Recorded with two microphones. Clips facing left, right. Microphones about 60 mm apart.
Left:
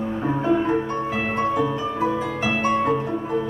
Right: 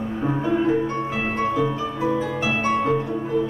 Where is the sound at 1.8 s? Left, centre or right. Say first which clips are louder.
Even; left.